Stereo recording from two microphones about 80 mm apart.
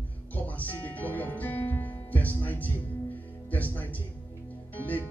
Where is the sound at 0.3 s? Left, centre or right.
Left.